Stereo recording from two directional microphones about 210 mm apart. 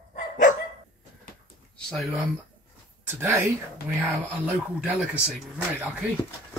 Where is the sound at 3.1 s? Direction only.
10° right (ahead or behind).